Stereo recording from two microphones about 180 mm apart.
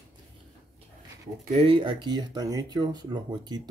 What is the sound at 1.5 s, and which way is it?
Speech, 30° right (ahead or behind).